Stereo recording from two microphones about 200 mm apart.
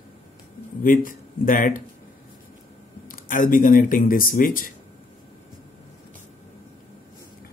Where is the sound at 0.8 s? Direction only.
45° left (ahead or behind).